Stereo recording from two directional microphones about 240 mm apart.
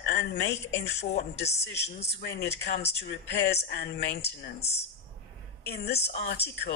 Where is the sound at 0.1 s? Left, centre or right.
Left.